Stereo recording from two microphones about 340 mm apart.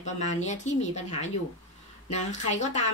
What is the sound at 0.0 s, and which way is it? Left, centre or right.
Speech, left.